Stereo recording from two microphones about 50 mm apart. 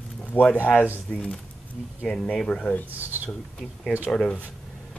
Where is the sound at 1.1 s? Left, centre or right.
Centre.